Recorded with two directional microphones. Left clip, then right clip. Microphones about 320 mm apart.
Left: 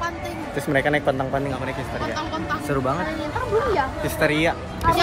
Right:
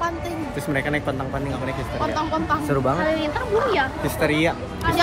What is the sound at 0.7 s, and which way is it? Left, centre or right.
Speech, centre.